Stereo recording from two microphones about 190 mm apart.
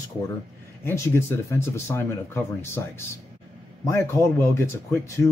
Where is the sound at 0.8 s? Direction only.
10° left (ahead or behind).